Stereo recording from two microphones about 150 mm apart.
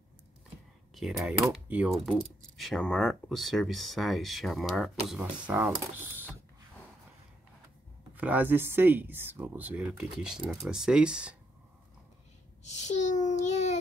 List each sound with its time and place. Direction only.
0.9 s speech: centre (ahead or behind)
8.1 s speech: 10° right (ahead or behind)
12.6 s child singing: 50° left (ahead or behind)